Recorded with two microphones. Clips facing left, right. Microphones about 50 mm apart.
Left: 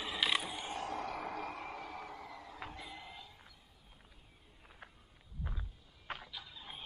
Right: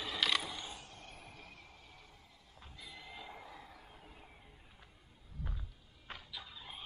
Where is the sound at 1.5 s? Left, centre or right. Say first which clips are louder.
Left 14 dB; left.